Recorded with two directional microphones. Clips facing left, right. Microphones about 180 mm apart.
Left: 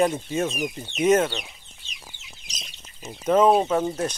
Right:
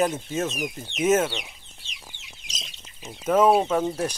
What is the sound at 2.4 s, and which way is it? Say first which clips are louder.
Chicken: right 2 dB; centre (ahead or behind).